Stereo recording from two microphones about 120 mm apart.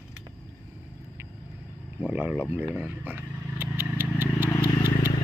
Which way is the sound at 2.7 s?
15° right (ahead or behind).